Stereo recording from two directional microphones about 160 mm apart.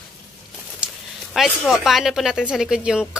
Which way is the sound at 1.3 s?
Centre (ahead or behind).